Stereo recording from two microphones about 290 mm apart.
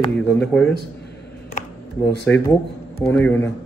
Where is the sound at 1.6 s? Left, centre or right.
Left.